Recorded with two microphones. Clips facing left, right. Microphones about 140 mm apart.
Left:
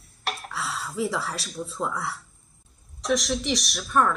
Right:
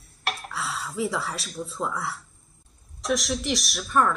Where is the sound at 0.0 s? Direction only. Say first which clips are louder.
Right 1 dB; centre (ahead or behind).